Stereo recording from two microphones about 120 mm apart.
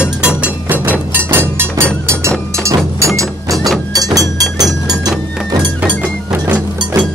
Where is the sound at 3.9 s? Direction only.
30° right (ahead or behind).